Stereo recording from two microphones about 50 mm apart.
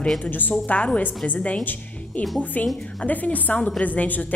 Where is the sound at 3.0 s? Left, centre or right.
Left.